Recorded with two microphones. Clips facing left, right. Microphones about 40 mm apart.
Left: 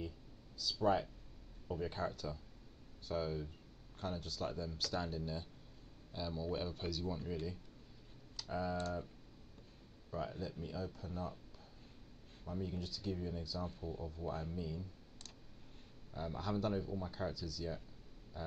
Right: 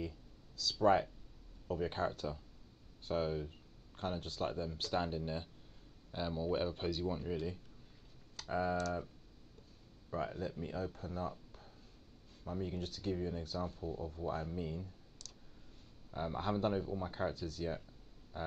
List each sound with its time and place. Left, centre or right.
0.6 s speech: right
10.1 s speech: right
12.4 s speech: right
16.1 s speech: right
18.3 s a sound: right